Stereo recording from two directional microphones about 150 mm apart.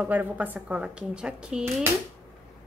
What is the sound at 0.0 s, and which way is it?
A woman's voice, 10° right (ahead or behind).